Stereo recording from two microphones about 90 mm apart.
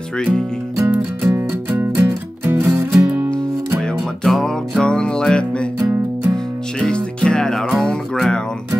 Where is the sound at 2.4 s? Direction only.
25° right (ahead or behind).